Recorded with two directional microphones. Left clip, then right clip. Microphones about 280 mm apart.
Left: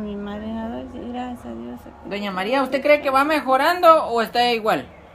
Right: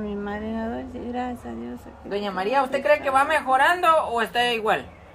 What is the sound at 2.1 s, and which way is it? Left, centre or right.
A woman's voice, left.